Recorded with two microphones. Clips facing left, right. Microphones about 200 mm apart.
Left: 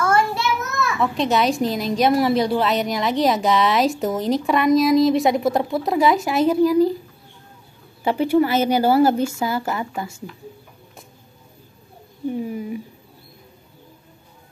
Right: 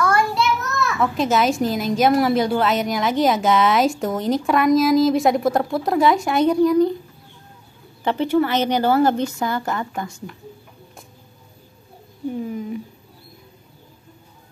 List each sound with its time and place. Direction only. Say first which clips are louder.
0.0 s a sound: even; 25° left (ahead or behind)
0.9 s a woman's voice: right 1 dB; centre (ahead or behind)
8.0 s a woman's voice: left 1 dB; 10° left (ahead or behind)
12.4 s a woman's voice: even; 10° left (ahead or behind)